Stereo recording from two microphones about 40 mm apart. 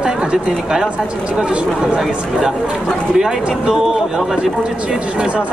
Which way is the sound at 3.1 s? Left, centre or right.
Centre.